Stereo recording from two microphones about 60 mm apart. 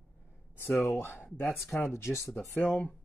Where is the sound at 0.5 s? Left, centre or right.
Left.